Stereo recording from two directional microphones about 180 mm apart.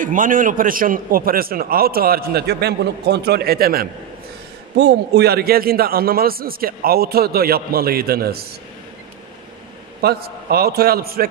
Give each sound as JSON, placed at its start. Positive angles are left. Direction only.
{"t": 0.0, "sound": "a man's voice", "side_deg": -50}
{"t": 10.0, "sound": "a man's voice", "side_deg": -60}